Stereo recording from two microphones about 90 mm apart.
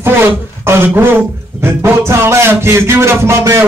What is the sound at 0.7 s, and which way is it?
Speech, 25° right (ahead or behind).